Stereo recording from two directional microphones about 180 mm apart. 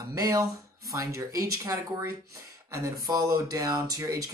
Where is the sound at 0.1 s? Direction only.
20° right (ahead or behind).